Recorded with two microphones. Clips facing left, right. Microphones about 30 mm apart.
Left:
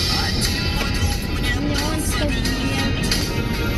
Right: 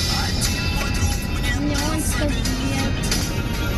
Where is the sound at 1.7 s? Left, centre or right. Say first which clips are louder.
Left 1 dB; left.